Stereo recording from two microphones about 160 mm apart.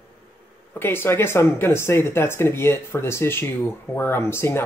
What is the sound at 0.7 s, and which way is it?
Speech, 15° left (ahead or behind).